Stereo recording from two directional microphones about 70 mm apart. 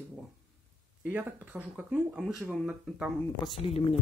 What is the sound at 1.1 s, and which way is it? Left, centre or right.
Speech, right.